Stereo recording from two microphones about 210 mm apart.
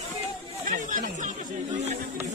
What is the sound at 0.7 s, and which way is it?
Chatter, 35° right (ahead or behind).